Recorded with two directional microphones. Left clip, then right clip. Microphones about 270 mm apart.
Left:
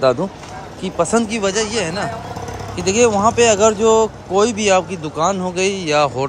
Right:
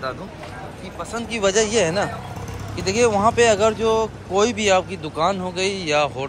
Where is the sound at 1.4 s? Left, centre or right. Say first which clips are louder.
Right 1 dB; centre.